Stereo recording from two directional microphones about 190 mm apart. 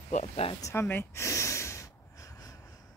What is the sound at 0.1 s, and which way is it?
Speech, 35° left (ahead or behind).